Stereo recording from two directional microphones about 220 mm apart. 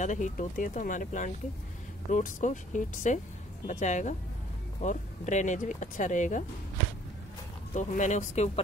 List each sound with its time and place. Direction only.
0.0 s speech: 35° left (ahead or behind)
7.7 s speech: 35° left (ahead or behind)